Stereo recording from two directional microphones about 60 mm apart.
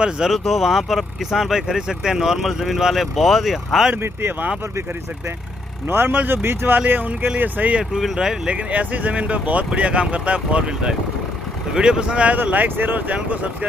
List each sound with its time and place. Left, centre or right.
0.0 s speech: centre
3.9 s speech: right
5.9 s speech: right
8.0 s speech: centre